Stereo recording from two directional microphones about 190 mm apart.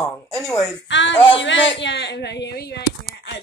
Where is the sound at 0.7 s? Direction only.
70° left (ahead or behind).